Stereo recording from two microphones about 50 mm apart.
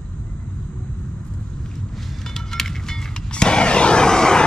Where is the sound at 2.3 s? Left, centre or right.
Centre.